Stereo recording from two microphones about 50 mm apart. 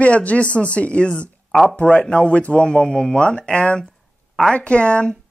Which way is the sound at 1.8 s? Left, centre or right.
Left.